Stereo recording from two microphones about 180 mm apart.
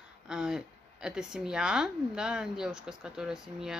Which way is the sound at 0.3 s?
5° right (ahead or behind).